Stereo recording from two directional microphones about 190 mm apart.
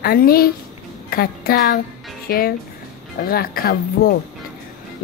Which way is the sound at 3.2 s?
50° left (ahead or behind).